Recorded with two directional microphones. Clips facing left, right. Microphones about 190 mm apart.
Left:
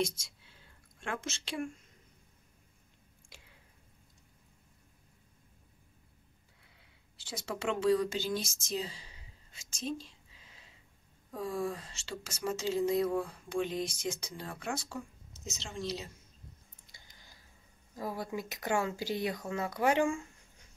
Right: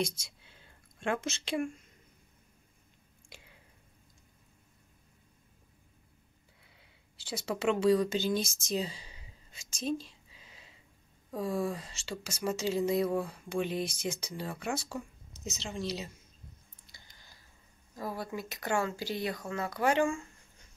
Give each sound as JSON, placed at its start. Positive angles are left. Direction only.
{"t": 0.0, "sound": "speech", "side_deg": -15}
{"t": 7.4, "sound": "speech", "side_deg": -10}
{"t": 11.4, "sound": "speech", "side_deg": -10}
{"t": 13.8, "sound": "speech", "side_deg": -65}
{"t": 14.2, "sound": "speech", "side_deg": -10}
{"t": 16.9, "sound": "a sound", "side_deg": 15}
{"t": 17.9, "sound": "speech", "side_deg": 15}